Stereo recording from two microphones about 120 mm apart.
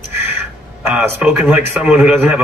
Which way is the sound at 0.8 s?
20° right (ahead or behind).